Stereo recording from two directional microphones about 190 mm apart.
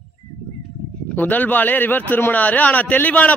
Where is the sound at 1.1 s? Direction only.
10° left (ahead or behind).